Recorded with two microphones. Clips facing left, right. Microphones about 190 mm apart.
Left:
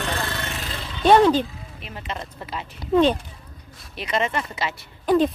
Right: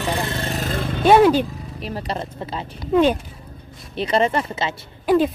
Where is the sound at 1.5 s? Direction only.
40° right (ahead or behind).